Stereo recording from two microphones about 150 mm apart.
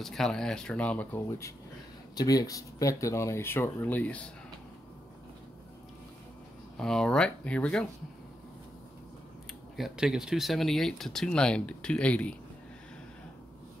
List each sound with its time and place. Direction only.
0.0 s speech: centre (ahead or behind)
2.1 s speech: 25° left (ahead or behind)
6.8 s speech: 5° left (ahead or behind)
9.8 s speech: centre (ahead or behind)